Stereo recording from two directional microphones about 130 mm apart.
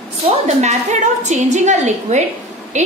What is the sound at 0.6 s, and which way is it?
A woman's voice, 65° right (ahead or behind).